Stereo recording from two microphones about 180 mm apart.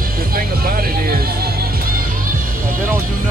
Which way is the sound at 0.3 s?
55° right (ahead or behind).